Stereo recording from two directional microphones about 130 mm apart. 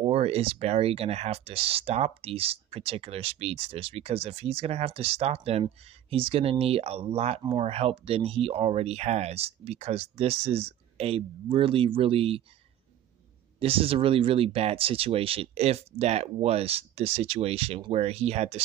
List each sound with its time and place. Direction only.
0.0 s speech: 50° right (ahead or behind)
13.6 s speech: 45° right (ahead or behind)